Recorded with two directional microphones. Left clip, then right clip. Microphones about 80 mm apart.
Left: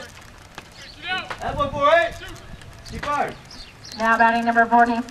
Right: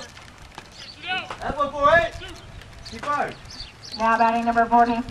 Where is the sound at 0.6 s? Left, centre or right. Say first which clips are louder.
Left 1 dB; left.